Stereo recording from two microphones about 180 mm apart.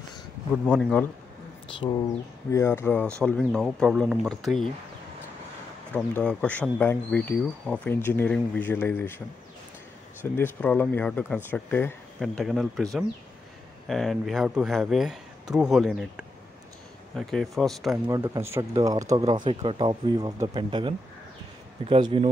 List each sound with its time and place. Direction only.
0.7 s speech: 5° left (ahead or behind)
2.5 s speech: 15° left (ahead or behind)
5.9 s speech: 10° left (ahead or behind)
10.3 s speech: 10° left (ahead or behind)
18.2 s speech: 15° right (ahead or behind)
19.2 s speech: 30° right (ahead or behind)